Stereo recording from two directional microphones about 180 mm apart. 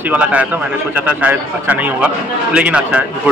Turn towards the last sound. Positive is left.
turn(degrees=-5)  # may be behind; listen again after turning